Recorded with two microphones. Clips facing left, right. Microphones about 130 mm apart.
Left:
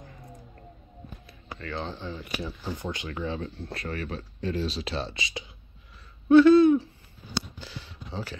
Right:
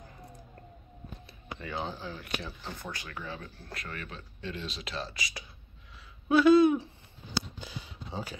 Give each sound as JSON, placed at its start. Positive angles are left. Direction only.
{"t": 1.6, "sound": "speech", "side_deg": -10}
{"t": 2.8, "sound": "speech", "side_deg": 20}
{"t": 6.2, "sound": "speech", "side_deg": -10}
{"t": 7.5, "sound": "a sound", "side_deg": -15}